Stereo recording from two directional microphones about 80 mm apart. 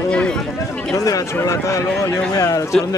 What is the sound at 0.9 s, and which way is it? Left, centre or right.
A man's voice, left.